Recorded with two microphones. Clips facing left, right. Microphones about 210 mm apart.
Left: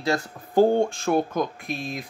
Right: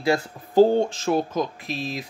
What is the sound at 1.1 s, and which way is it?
Speech, 55° left (ahead or behind).